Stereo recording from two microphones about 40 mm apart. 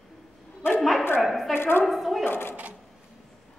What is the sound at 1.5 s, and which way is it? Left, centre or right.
Speech, left.